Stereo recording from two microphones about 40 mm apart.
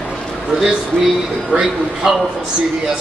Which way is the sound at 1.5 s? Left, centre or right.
Centre.